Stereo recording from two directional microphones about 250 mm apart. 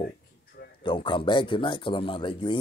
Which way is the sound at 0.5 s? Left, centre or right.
Left.